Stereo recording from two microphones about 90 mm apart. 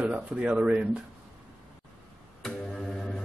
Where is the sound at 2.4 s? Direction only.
5° left (ahead or behind).